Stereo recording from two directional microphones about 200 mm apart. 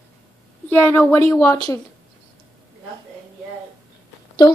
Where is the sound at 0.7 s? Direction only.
10° left (ahead or behind).